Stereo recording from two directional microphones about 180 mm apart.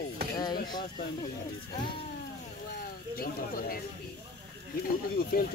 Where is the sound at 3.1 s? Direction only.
55° left (ahead or behind).